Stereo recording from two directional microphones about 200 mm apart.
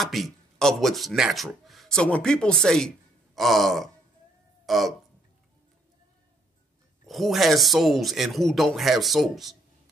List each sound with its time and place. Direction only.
0.0 s speech: centre (ahead or behind)
7.1 s speech: centre (ahead or behind)